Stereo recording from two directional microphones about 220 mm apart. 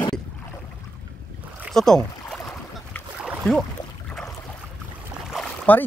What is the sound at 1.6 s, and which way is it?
Boat, centre (ahead or behind).